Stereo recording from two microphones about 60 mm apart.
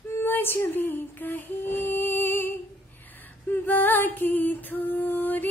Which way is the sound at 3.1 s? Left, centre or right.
Left.